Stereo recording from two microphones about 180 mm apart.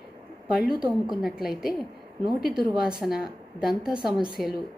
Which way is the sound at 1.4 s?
5° right (ahead or behind).